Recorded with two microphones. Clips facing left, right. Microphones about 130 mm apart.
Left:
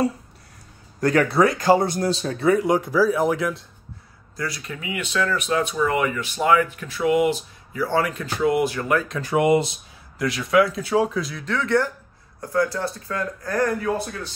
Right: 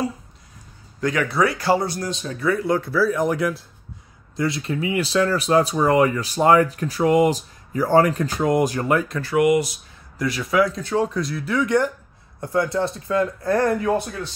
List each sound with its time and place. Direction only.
1.3 s speech: 25° left (ahead or behind)
2.0 s speech: 35° left (ahead or behind)
2.4 s speech: 15° left (ahead or behind)
3.1 s speech: centre (ahead or behind)
4.4 s speech: 25° right (ahead or behind); by 8.8 s 40° right (ahead or behind)
9.2 s speech: 25° left (ahead or behind)
10.1 s speech: centre (ahead or behind); by 14.0 s 25° right (ahead or behind)